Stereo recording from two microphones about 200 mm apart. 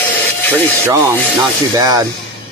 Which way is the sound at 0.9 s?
15° right (ahead or behind).